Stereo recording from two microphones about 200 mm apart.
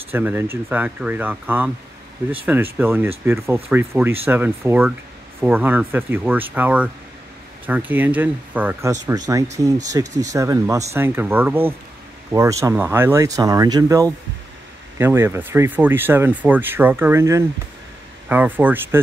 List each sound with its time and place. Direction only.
0.1 s speech: 10° right (ahead or behind)
9.0 s speech: 20° right (ahead or behind)